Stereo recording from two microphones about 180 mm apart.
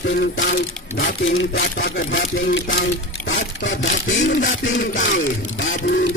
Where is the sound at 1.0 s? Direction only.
85° left.